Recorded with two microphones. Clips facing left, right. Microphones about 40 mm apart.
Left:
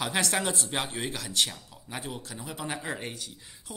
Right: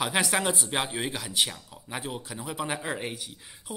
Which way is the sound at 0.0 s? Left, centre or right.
Centre.